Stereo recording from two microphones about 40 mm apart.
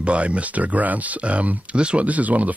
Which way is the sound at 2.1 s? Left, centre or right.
Right.